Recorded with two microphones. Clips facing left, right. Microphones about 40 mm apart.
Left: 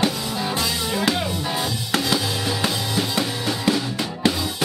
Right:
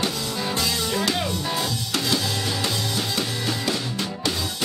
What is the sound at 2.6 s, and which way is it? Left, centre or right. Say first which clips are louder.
Drum: left 3 dB; centre.